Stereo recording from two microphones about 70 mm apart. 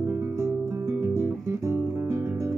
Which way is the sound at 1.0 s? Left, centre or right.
Right.